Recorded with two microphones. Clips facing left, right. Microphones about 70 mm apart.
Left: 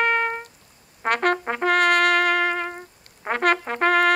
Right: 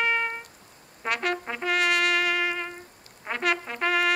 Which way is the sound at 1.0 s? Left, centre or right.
Left.